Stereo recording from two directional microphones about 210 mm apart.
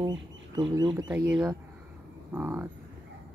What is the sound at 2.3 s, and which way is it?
Speech, 10° right (ahead or behind).